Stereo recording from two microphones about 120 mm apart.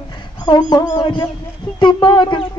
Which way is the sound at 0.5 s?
35° left (ahead or behind).